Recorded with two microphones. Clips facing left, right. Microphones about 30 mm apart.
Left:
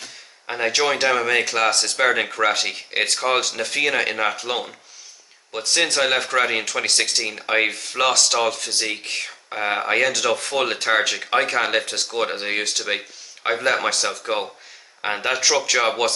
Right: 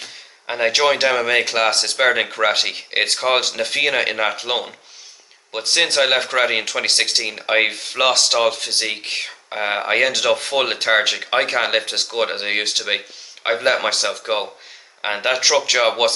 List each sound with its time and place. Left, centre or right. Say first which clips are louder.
0.5 s speech: right 4 dB; right
11.8 s speech: right 3 dB; right